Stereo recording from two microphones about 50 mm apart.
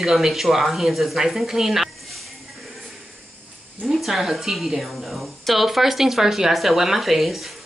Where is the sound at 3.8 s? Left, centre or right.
Centre.